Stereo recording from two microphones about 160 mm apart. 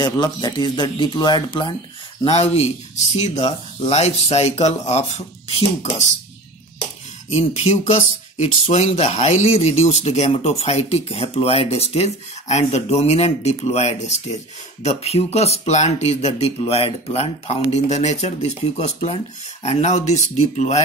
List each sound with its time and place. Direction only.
0.0 s speech: 25° left (ahead or behind)
3.2 s speech: 45° left (ahead or behind)
7.2 s speech: 40° left (ahead or behind)